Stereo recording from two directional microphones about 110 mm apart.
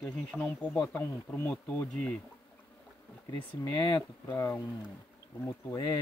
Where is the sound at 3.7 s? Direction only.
25° left (ahead or behind).